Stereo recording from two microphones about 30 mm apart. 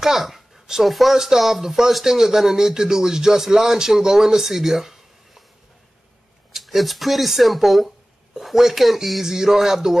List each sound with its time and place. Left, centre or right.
0.0 s speech: centre
1.1 s speech: centre
6.5 s speech: centre
9.2 s speech: centre